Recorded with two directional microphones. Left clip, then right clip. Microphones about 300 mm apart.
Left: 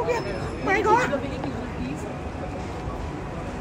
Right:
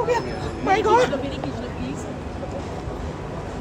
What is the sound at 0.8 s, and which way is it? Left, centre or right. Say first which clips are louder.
Speech: right 2 dB; centre.